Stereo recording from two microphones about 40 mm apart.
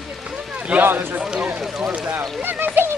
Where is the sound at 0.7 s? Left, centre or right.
Right.